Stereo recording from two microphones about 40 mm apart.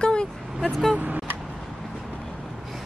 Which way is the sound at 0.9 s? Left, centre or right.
Right.